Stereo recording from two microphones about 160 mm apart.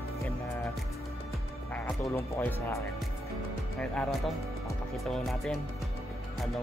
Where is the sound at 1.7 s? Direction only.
10° left (ahead or behind).